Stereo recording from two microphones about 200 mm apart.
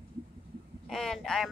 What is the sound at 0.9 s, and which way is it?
Speech, centre (ahead or behind).